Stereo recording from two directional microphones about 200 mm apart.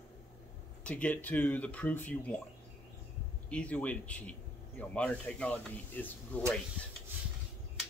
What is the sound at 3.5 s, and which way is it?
Speech, 5° left (ahead or behind).